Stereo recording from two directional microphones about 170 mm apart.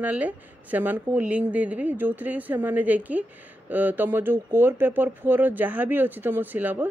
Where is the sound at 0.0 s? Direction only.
10° right (ahead or behind).